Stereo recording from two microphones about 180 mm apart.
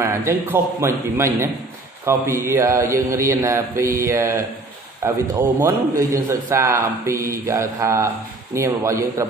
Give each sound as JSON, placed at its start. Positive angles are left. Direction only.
{"t": 0.0, "sound": "a man's voice", "side_deg": -15}